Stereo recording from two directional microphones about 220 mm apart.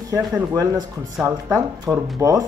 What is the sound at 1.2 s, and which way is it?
Speech, centre (ahead or behind).